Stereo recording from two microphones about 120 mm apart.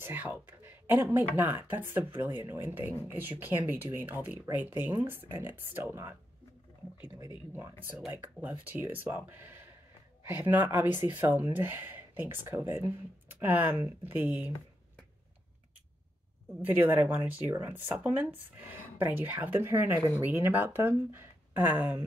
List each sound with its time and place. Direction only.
0.0 s a woman's voice: 15° right (ahead or behind)
7.2 s speech: 25° right (ahead or behind)
16.6 s speech: 15° right (ahead or behind)